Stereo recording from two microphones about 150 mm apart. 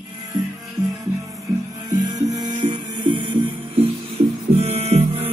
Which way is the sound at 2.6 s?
35° right (ahead or behind).